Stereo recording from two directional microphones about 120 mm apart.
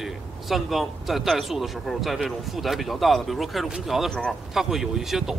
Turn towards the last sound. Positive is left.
turn(degrees=-5)  # may be behind; listen again after turning